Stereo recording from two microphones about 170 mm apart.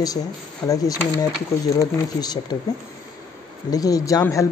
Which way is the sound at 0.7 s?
20° left (ahead or behind).